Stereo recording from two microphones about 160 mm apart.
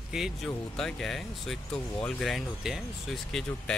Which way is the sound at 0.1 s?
Centre (ahead or behind).